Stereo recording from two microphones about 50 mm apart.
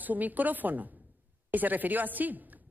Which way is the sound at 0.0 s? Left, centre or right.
Right.